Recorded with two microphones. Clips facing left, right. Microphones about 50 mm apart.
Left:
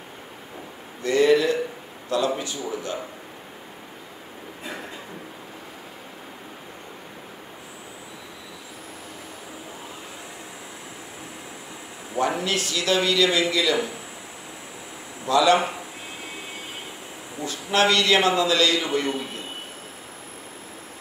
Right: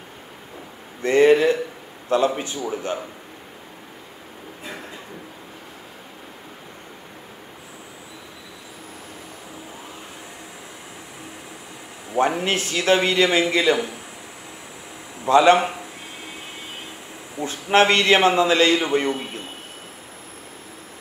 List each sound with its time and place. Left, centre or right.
1.0 s a man's voice: right
12.2 s a man's voice: right
15.2 s a man's voice: right
17.4 s a man's voice: right